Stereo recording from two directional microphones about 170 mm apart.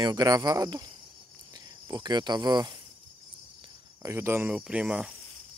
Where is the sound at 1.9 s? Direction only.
25° right (ahead or behind).